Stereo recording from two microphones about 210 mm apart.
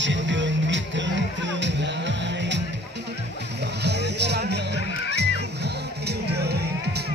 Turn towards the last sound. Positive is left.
turn(degrees=-50)  # may be behind; listen again after turning